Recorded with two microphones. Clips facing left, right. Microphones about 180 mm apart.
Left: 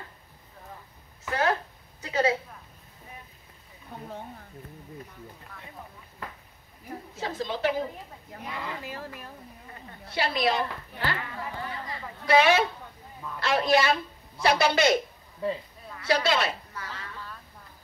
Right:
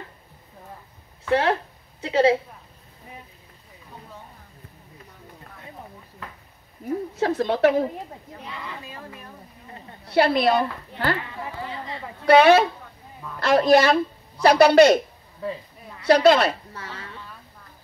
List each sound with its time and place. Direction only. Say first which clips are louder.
1.3 s speech: right 6 dB; 25° right (ahead or behind)
7.2 s a woman's voice: right 10 dB; 65° right (ahead or behind)
10.0 s a woman's voice: right 8 dB; 60° right (ahead or behind)
11.4 s a sound: right 3 dB; 25° right (ahead or behind)
12.3 s a woman's voice: right 7 dB; 60° right (ahead or behind)
16.1 s a woman's voice: right 9 dB; 60° right (ahead or behind)